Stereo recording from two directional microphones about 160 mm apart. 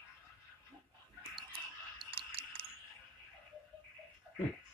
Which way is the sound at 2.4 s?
35° right (ahead or behind).